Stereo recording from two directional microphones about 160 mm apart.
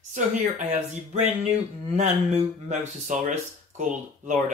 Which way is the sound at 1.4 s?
40° right (ahead or behind).